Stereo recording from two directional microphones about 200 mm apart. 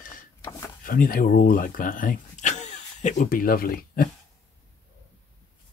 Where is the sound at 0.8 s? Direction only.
45° left (ahead or behind).